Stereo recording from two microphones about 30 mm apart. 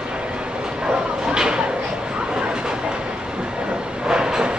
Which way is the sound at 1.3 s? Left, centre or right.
Right.